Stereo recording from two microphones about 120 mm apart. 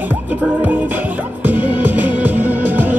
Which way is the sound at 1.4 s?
15° right (ahead or behind).